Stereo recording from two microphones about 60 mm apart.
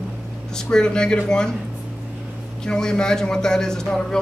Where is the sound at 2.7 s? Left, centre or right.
Centre.